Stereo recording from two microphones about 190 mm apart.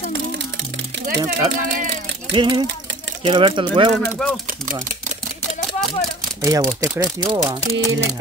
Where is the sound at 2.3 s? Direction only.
25° right (ahead or behind).